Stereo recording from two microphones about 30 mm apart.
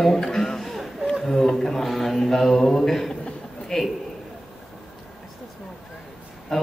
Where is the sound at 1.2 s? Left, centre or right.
Centre.